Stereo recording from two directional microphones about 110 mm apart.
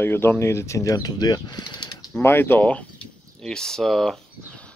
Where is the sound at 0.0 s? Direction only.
20° left (ahead or behind); by 2.0 s 35° left (ahead or behind).